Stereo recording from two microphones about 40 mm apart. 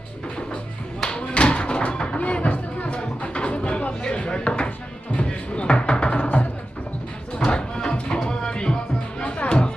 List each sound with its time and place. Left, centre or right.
1.1 s a sound: left
5.1 s music: left
6.1 s music: left
7.3 s music: left